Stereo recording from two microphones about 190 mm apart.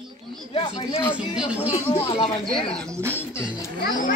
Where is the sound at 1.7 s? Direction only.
30° left (ahead or behind).